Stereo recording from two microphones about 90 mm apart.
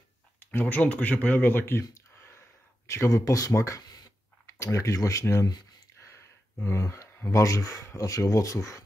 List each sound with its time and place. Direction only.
0.4 s speech: 20° left (ahead or behind); by 8.8 s 40° left (ahead or behind)